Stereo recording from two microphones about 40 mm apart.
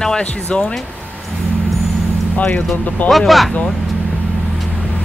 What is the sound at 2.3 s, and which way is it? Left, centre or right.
Speech, left.